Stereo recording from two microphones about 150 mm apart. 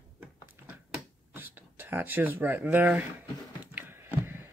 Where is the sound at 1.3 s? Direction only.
15° right (ahead or behind).